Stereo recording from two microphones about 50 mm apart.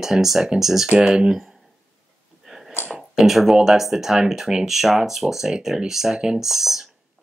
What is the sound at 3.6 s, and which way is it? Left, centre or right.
Speech, centre.